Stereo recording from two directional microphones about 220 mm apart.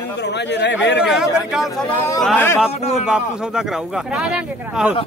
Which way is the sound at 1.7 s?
15° left (ahead or behind).